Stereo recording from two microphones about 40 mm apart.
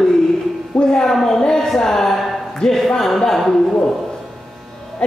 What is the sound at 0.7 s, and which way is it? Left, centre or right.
Speech, centre.